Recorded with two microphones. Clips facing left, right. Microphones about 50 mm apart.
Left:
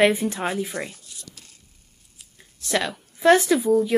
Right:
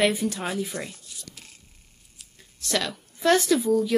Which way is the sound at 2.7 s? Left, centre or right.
Left.